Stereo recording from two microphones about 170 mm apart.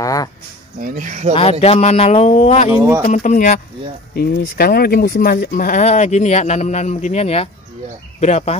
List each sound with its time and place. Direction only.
0.0 s a sound: 20° left (ahead or behind)
0.7 s speech: 50° right (ahead or behind)
1.3 s a man's voice: 35° left (ahead or behind)
4.1 s a man's voice: 65° left (ahead or behind); by 8.5 s 40° left (ahead or behind)